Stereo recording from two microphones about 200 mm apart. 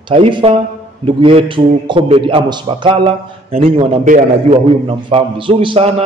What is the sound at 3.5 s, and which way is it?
A man's voice, 35° right (ahead or behind).